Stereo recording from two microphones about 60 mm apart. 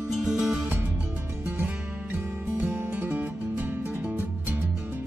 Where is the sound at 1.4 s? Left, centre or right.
Right.